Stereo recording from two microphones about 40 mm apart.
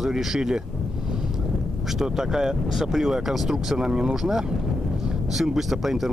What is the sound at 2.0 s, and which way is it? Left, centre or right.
Speech, centre.